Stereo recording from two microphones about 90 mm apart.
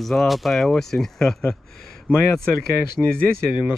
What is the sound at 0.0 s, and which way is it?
Speech, 5° left (ahead or behind).